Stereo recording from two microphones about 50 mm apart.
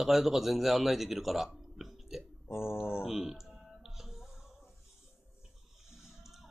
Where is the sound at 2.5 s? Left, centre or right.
Left.